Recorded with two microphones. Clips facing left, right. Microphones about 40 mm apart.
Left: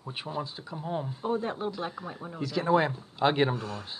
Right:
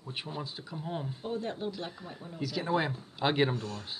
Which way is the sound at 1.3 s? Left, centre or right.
Centre.